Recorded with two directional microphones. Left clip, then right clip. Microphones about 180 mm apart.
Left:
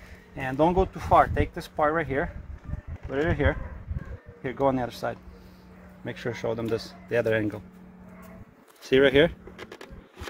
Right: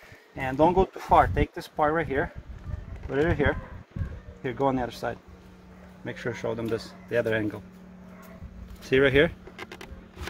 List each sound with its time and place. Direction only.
0.4 s speech: 15° left (ahead or behind)
3.1 s a man's voice: 10° left (ahead or behind); by 7.6 s 40° left (ahead or behind)
8.8 s speech: 45° left (ahead or behind)